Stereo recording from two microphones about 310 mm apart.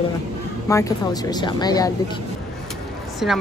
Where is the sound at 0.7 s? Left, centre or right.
Centre.